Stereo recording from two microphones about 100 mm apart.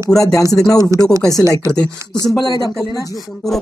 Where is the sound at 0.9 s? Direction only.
35° right (ahead or behind).